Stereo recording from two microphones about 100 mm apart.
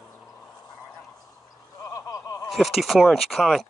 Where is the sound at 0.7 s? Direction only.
20° right (ahead or behind).